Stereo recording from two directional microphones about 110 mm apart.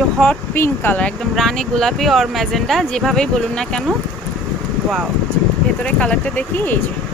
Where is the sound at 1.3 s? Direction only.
5° left (ahead or behind).